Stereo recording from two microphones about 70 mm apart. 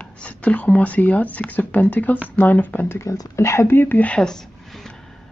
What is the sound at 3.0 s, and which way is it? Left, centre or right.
Speech, left.